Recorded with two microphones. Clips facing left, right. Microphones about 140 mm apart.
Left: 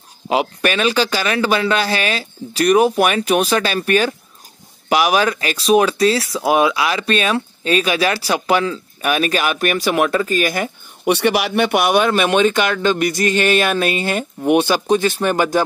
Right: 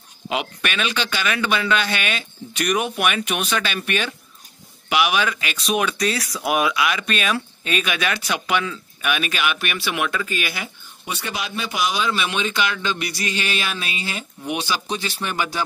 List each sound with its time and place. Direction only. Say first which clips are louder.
0.3 s speech: left 8 dB; 35° left (ahead or behind)
11.1 s speech: left 13 dB; 75° left (ahead or behind); by 15.6 s 45° left (ahead or behind)